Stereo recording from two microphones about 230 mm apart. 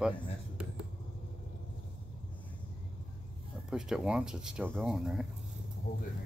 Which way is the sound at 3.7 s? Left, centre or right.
Centre.